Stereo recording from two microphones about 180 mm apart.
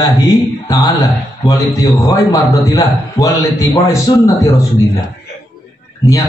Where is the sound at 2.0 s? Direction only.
20° left (ahead or behind).